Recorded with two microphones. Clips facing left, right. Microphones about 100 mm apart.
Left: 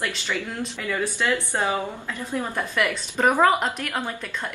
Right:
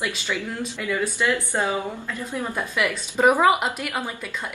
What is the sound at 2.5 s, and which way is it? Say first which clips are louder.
A woman's voice: right 1 dB; 5° right (ahead or behind).